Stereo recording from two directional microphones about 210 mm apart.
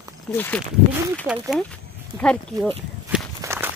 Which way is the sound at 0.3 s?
10° left (ahead or behind).